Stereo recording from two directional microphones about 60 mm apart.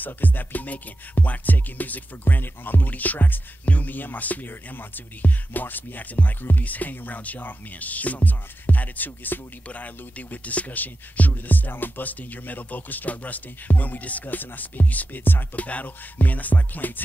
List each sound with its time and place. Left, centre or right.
0.0 s music: left